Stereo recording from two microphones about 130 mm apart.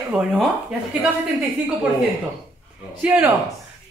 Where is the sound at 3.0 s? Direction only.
10° right (ahead or behind).